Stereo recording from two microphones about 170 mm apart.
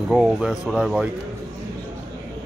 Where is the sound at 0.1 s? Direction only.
Centre (ahead or behind).